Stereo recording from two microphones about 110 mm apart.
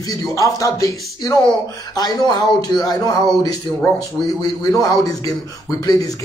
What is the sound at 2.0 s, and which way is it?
A man's voice, 40° left (ahead or behind).